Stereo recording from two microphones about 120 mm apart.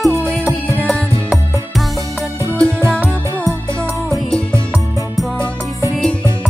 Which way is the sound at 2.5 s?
5° left (ahead or behind).